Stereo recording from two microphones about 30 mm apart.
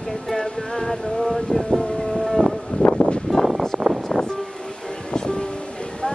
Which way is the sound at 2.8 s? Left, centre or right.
Left.